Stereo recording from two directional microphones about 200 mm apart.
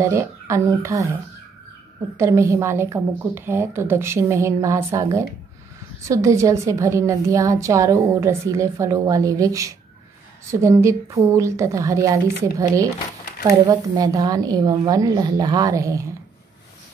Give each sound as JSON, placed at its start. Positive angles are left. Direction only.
{"t": 0.0, "sound": "a woman's voice", "side_deg": -15}
{"t": 2.1, "sound": "a woman's voice", "side_deg": -15}
{"t": 13.5, "sound": "a woman's voice", "side_deg": -20}